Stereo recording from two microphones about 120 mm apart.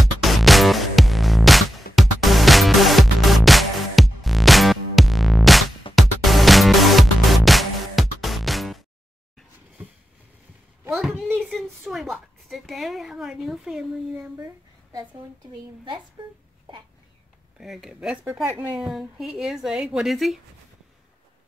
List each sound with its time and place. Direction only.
0.0 s music: centre (ahead or behind)
10.9 s a sound: centre (ahead or behind)
16.2 s speech: 40° right (ahead or behind)
17.6 s a woman's voice: centre (ahead or behind)
18.2 s speech: 20° right (ahead or behind)
18.8 s a woman's voice: 5° right (ahead or behind)